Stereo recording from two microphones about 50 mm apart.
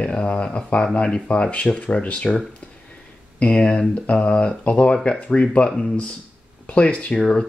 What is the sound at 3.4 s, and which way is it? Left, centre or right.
Speech, left.